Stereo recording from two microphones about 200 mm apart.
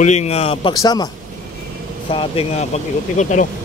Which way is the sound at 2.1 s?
25° left (ahead or behind).